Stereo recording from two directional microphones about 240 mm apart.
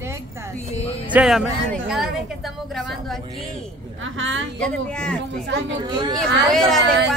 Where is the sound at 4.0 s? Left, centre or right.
Right.